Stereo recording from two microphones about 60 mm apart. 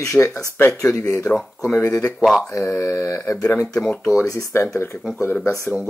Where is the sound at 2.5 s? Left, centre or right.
Left.